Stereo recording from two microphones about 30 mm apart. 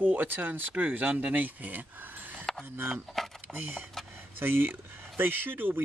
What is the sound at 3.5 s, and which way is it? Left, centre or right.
Speech, right.